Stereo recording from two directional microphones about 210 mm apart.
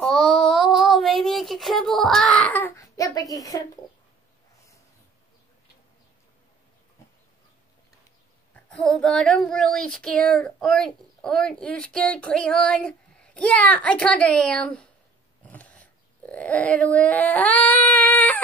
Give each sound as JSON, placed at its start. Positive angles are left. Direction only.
{"t": 0.0, "sound": "child singing", "side_deg": 0}
{"t": 8.6, "sound": "speech", "side_deg": 5}
{"t": 15.4, "sound": "a sound", "side_deg": 5}